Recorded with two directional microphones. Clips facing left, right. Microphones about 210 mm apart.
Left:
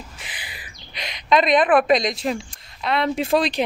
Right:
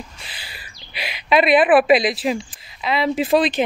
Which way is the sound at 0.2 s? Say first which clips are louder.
Left 1 dB; 15° left (ahead or behind).